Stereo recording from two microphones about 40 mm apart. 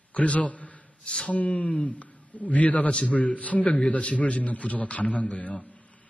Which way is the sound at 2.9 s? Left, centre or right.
Left.